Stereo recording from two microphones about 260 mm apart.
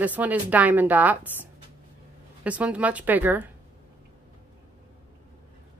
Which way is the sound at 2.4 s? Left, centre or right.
Centre.